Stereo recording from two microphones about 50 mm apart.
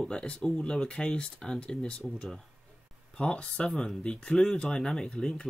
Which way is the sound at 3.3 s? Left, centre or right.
Centre.